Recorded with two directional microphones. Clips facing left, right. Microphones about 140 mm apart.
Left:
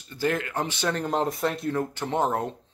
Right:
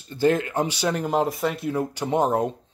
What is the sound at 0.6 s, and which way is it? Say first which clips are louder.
Speech: right 3 dB; 10° right (ahead or behind).